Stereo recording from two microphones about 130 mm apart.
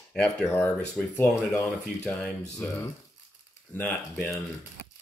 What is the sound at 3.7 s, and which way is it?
Speech, 15° left (ahead or behind).